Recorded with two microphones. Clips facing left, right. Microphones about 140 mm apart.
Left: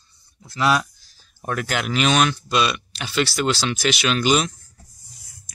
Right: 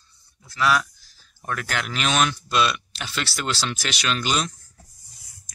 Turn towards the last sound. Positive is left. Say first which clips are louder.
# left 6 dB
turn(degrees=10)  # may be behind; listen again after turning